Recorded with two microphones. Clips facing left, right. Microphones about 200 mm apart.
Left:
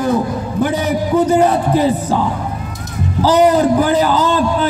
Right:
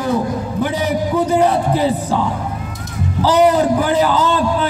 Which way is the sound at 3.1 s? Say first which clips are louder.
Left 1 dB; 40° left (ahead or behind).